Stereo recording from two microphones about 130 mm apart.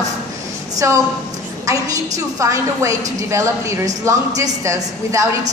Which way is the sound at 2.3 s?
25° right (ahead or behind).